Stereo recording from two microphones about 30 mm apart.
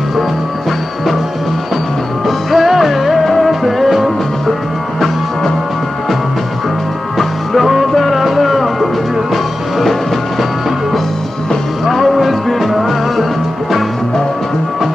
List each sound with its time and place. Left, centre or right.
2.2 s music: centre
7.2 s music: centre
11.8 s music: centre